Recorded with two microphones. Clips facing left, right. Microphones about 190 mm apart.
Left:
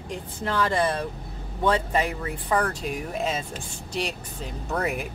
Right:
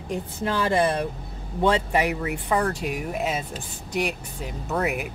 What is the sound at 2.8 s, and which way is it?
Speech, 10° right (ahead or behind).